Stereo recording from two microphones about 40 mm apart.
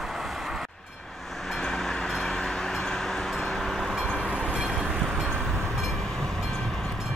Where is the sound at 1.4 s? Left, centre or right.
Centre.